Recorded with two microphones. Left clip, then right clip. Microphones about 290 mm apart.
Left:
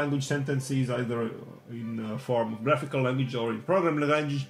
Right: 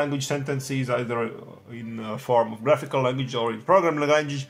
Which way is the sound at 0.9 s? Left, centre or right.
Right.